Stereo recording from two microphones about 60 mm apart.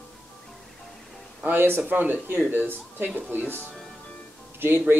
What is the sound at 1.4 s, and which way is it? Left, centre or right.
Speech, right.